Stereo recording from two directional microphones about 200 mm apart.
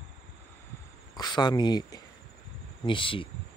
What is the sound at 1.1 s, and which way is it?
Speech, 20° left (ahead or behind).